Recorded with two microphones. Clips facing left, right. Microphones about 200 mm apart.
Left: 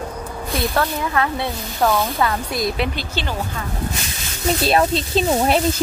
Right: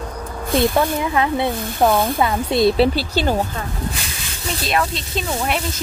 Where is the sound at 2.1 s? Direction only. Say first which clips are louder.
Right 4 dB; 25° right (ahead or behind).